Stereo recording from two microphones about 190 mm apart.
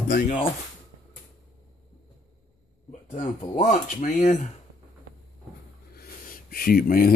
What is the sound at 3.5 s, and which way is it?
Speech, 45° left (ahead or behind).